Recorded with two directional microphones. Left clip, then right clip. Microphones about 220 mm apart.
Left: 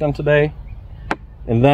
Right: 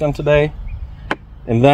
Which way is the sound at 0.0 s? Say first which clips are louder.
Right 1 dB; 15° right (ahead or behind).